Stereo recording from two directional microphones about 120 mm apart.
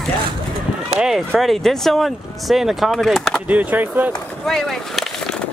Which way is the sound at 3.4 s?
10° right (ahead or behind).